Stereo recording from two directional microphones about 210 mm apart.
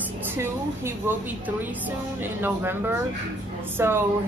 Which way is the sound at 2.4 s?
10° right (ahead or behind).